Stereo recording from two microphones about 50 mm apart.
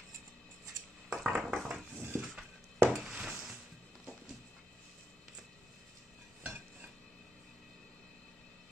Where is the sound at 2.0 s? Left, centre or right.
Right.